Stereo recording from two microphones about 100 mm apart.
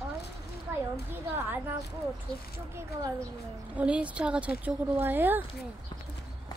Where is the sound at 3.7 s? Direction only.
15° right (ahead or behind).